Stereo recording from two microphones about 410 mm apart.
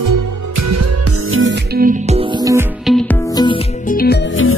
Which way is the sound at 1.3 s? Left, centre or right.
Right.